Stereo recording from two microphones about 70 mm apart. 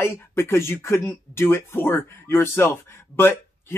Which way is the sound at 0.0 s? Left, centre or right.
Left.